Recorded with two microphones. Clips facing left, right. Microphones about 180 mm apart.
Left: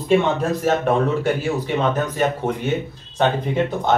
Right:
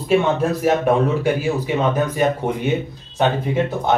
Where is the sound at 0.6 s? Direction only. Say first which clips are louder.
Right 2 dB; 10° right (ahead or behind).